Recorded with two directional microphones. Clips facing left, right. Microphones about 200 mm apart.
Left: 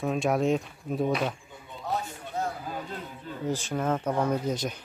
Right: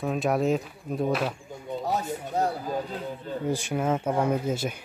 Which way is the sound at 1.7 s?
40° right (ahead or behind).